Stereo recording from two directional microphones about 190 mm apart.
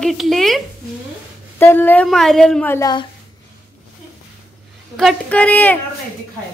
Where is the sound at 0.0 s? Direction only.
Centre (ahead or behind).